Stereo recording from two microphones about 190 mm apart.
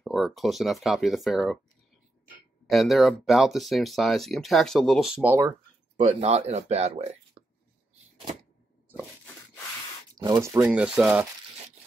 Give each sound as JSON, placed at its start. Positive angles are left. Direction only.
{"t": 0.0, "sound": "speech", "side_deg": 0}
{"t": 2.6, "sound": "speech", "side_deg": 0}
{"t": 6.0, "sound": "speech", "side_deg": -35}
{"t": 7.4, "sound": "a sound", "side_deg": -60}
{"t": 10.1, "sound": "speech", "side_deg": -20}